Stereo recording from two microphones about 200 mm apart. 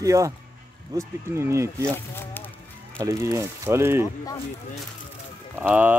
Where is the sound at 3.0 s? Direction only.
15° right (ahead or behind).